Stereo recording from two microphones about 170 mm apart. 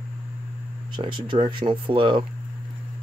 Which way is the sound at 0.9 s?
30° right (ahead or behind).